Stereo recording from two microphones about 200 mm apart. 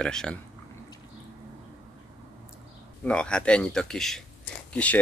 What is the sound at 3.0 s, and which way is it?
Speech, 5° left (ahead or behind).